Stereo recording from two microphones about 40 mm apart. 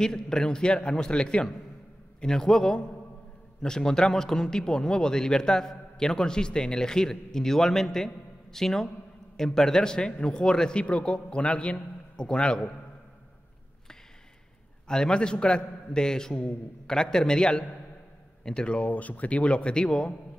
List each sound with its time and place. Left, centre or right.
0.0 s a man's voice: centre
14.9 s a man's voice: centre
18.8 s a man's voice: left; by 20.2 s centre